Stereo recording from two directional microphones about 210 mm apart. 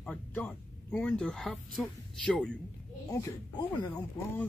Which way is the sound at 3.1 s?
15° left (ahead or behind).